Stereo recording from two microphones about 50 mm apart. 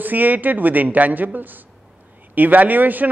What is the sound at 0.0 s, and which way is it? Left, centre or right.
A man's voice, right.